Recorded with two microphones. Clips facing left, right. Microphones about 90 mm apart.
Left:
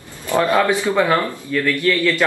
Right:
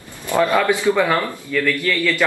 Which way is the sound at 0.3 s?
20° left (ahead or behind).